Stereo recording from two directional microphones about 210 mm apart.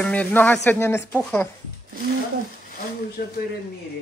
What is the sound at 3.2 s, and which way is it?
Speech, 50° left (ahead or behind).